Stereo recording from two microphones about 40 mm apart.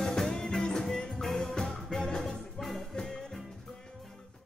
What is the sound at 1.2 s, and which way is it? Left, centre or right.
Music, centre.